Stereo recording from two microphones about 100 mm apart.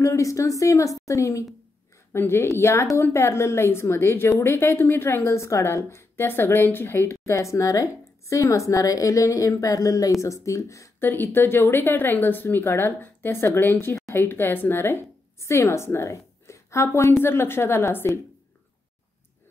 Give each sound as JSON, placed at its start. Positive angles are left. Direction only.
{"t": 0.0, "sound": "a woman's voice", "side_deg": 30}
{"t": 11.1, "sound": "a woman's voice", "side_deg": 20}